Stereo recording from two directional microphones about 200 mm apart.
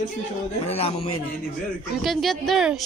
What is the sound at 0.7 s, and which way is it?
Speech, 30° left (ahead or behind).